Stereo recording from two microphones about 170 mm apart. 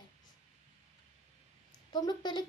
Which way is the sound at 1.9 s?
25° left (ahead or behind).